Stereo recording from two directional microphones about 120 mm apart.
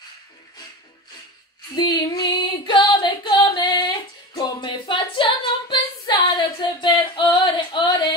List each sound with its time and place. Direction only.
1.8 s singing: 35° left (ahead or behind)